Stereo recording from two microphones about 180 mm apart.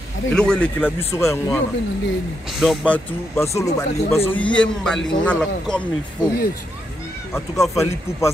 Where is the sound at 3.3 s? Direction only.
15° left (ahead or behind).